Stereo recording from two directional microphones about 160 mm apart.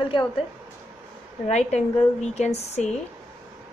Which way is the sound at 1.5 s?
45° left (ahead or behind).